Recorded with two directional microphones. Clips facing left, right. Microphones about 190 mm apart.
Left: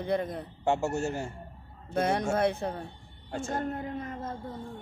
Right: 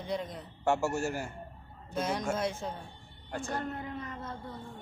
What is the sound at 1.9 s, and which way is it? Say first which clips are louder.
Speech: left 5 dB; 60° left (ahead or behind).